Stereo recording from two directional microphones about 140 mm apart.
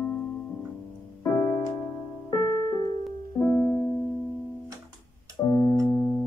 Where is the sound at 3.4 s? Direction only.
10° left (ahead or behind).